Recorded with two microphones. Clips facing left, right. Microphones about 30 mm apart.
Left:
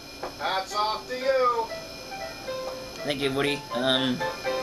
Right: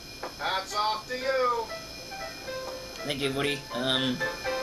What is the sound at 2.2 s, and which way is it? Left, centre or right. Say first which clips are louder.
Music: left 3 dB; centre.